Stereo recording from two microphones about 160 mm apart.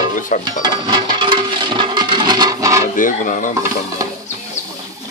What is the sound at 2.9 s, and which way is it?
Speech, 55° left (ahead or behind).